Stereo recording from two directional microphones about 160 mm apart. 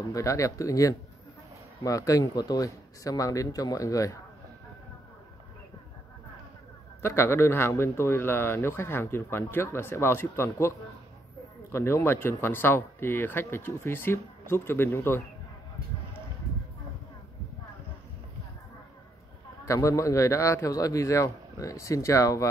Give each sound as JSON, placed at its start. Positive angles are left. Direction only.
{"t": 0.1, "sound": "a man's voice", "side_deg": 20}
{"t": 7.0, "sound": "a man's voice", "side_deg": 15}
{"t": 11.7, "sound": "a man's voice", "side_deg": 15}
{"t": 19.6, "sound": "a man's voice", "side_deg": 20}